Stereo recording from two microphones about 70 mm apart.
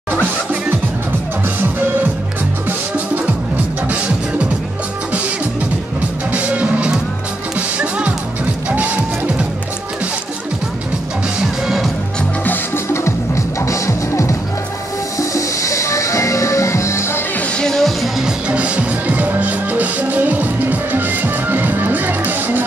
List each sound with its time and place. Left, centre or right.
6.3 s music: right
11.6 s music: centre
12.4 s music: left
17.4 s music: centre
18.5 s music: centre